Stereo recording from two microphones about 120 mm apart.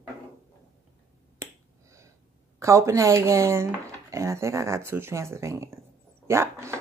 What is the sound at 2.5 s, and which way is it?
Speech, 25° right (ahead or behind).